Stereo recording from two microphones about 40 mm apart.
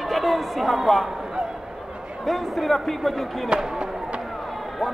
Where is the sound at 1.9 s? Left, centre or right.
Right.